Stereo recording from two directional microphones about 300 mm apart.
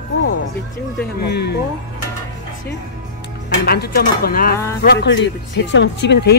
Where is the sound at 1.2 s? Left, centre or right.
Left.